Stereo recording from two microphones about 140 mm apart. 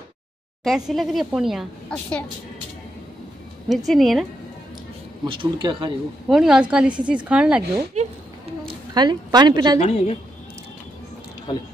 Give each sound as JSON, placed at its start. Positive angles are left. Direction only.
{"t": 0.7, "sound": "a woman's voice", "side_deg": 0}
{"t": 3.6, "sound": "a woman's voice", "side_deg": 0}
{"t": 5.2, "sound": "speech", "side_deg": -35}
{"t": 6.2, "sound": "a woman's voice", "side_deg": -5}
{"t": 8.9, "sound": "a woman's voice", "side_deg": -30}
{"t": 9.8, "sound": "a woman's voice", "side_deg": 50}